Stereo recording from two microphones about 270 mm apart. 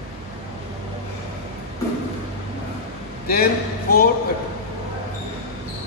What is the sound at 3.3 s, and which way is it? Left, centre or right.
Speech, left.